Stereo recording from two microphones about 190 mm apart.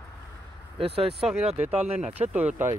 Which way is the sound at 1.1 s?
5° right (ahead or behind).